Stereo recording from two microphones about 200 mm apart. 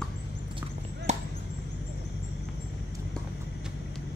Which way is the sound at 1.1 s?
35° right (ahead or behind).